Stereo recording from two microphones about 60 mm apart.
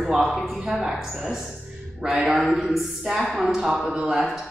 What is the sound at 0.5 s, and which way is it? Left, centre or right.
Speech, right.